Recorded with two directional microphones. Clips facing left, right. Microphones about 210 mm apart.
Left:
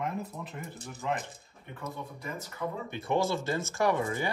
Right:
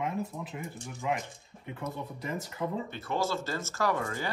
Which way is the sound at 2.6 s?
25° right (ahead or behind).